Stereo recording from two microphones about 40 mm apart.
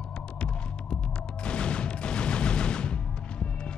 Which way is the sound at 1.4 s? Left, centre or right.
Left.